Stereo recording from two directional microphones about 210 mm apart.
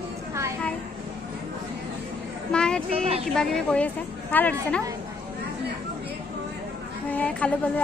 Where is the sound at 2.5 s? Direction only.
5° left (ahead or behind).